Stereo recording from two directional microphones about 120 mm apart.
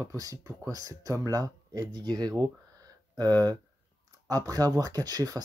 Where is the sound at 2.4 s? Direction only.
35° right (ahead or behind).